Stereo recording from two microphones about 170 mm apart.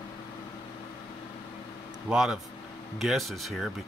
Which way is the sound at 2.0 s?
5° right (ahead or behind).